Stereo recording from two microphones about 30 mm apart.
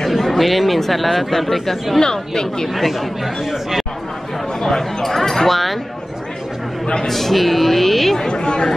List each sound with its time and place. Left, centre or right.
0.1 s speech: centre
2.0 s speech: left
2.7 s speech: centre
4.6 s speech: centre
7.1 s speech: centre
8.3 s speech: left